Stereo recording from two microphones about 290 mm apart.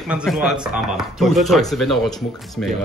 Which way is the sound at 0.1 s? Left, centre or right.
Centre.